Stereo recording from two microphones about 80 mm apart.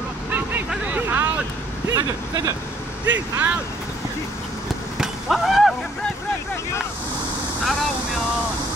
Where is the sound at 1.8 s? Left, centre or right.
Right.